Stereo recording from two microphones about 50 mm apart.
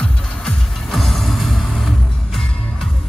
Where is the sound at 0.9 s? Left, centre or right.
Centre.